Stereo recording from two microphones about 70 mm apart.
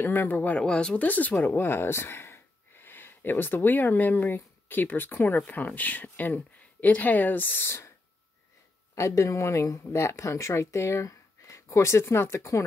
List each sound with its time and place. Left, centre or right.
0.0 s speech: left
0.6 s speech: centre; by 7.8 s left
8.9 s speech: left